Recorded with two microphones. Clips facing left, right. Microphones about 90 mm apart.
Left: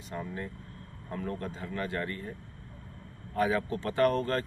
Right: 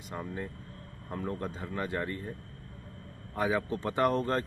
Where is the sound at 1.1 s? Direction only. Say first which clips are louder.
Even; 20° right (ahead or behind).